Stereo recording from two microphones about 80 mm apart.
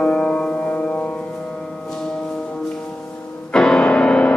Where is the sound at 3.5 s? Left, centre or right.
Centre.